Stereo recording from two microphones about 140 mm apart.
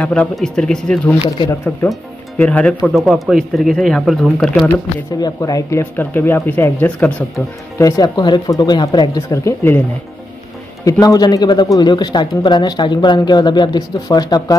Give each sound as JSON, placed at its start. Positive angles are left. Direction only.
{"t": 0.0, "sound": "speech", "side_deg": 10}
{"t": 1.2, "sound": "speech", "side_deg": 35}
{"t": 2.3, "sound": "speech", "side_deg": 10}
{"t": 2.8, "sound": "speech", "side_deg": 0}
{"t": 5.2, "sound": "speech", "side_deg": 25}
{"t": 7.8, "sound": "speech", "side_deg": 25}
{"t": 10.9, "sound": "speech", "side_deg": 25}